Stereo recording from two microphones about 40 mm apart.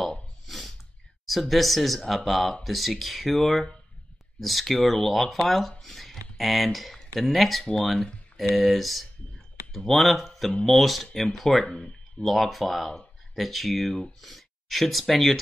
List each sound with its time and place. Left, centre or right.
0.5 s a sound: centre
1.2 s speech: centre
11.6 s speech: left
12.2 s speech: centre